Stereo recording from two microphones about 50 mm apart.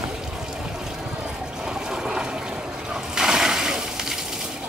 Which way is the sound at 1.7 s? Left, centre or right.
Centre.